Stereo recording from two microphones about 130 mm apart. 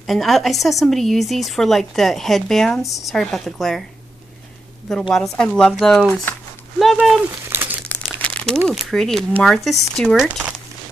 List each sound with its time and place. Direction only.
0.0 s speech: centre (ahead or behind)
4.8 s speech: 5° left (ahead or behind)
7.2 s crumpling: 15° right (ahead or behind)
8.2 s crumpling: 10° left (ahead or behind)
8.6 s speech: 5° left (ahead or behind)
10.1 s speech: 5° right (ahead or behind)